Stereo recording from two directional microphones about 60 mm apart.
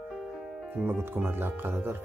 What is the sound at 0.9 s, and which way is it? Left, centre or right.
Speech, right.